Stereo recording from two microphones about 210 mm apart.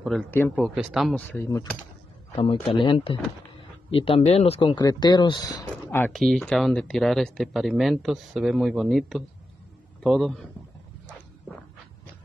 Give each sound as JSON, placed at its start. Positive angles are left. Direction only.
{"t": 0.0, "sound": "speech", "side_deg": 5}
{"t": 2.3, "sound": "speech", "side_deg": 25}